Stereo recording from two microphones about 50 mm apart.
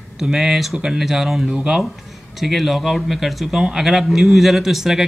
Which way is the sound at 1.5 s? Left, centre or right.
Centre.